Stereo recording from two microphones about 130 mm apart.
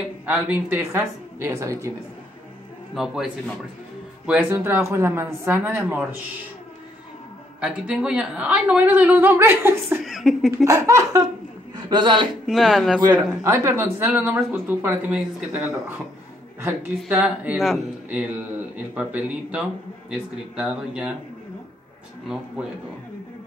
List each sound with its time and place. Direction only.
0.3 s a woman's voice: 10° right (ahead or behind)
2.9 s a man's voice: centre (ahead or behind)
4.3 s a woman's voice: 15° right (ahead or behind)
7.6 s a woman's voice: 5° right (ahead or behind)
10.0 s a man's voice: 5° right (ahead or behind)
10.6 s speech: 25° right (ahead or behind)
11.7 s a man's voice: 35° right (ahead or behind)
12.4 s a man's voice: centre (ahead or behind)
13.4 s a woman's voice: 20° right (ahead or behind)
17.1 s a man's voice: 5° right (ahead or behind)